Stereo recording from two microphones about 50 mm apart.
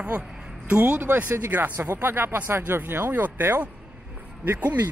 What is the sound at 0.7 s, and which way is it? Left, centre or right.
Speech, right.